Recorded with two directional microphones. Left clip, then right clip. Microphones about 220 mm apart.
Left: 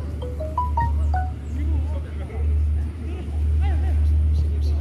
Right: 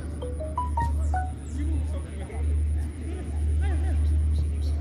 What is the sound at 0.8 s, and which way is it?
Music, 15° right (ahead or behind).